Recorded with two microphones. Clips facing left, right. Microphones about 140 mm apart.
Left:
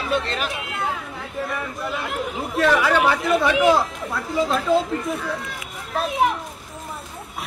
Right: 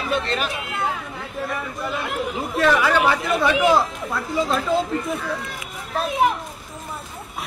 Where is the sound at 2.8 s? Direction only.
60° left (ahead or behind).